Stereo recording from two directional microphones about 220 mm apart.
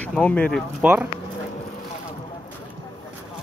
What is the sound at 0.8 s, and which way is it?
Speech, 5° right (ahead or behind).